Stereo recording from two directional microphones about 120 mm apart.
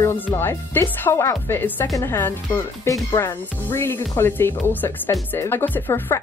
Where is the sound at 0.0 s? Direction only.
20° left (ahead or behind).